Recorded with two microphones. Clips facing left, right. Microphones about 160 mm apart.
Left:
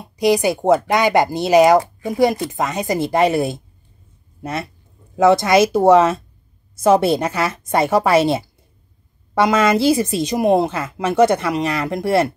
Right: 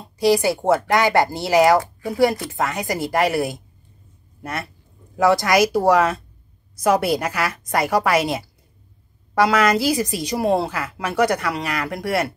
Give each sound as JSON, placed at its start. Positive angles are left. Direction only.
{"t": 0.0, "sound": "speech", "side_deg": 20}